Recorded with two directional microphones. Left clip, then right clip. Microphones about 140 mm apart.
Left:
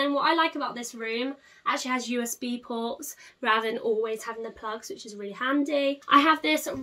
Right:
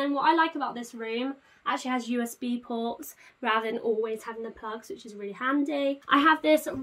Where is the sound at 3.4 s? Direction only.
20° right (ahead or behind).